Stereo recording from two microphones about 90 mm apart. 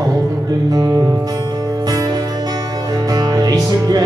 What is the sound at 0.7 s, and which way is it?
Music, 45° right (ahead or behind).